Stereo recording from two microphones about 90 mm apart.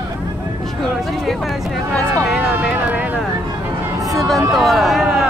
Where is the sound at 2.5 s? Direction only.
20° right (ahead or behind).